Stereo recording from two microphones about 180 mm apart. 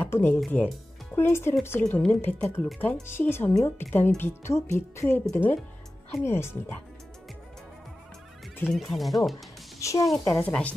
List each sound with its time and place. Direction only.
0.0 s speech: 10° left (ahead or behind)
8.7 s speech: centre (ahead or behind)
9.8 s a woman's voice: 15° left (ahead or behind)